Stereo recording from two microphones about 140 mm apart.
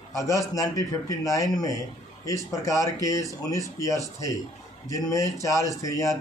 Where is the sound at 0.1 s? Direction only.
25° left (ahead or behind).